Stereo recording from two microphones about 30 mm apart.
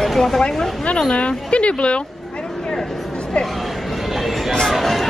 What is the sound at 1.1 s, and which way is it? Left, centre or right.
Speech, left.